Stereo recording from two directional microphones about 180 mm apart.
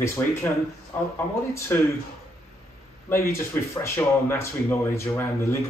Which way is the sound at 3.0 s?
15° left (ahead or behind).